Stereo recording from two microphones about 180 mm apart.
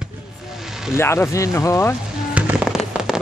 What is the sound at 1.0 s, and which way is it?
Speech, 15° left (ahead or behind).